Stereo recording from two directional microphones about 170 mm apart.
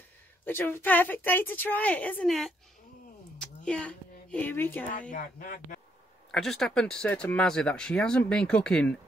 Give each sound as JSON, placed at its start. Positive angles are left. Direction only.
{"t": 0.5, "sound": "a woman's voice", "side_deg": 10}
{"t": 3.3, "sound": "a sound", "side_deg": 5}
{"t": 5.1, "sound": "speech", "side_deg": 50}
{"t": 6.3, "sound": "speech", "side_deg": 0}